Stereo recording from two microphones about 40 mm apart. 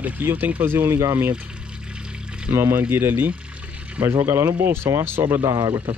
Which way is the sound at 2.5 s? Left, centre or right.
Right.